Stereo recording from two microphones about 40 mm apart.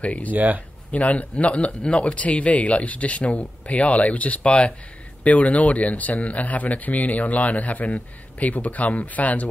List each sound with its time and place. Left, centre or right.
0.0 s speech: left
0.3 s speech: right
0.9 s speech: left